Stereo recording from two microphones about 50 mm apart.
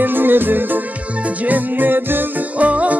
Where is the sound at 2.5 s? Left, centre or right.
Right.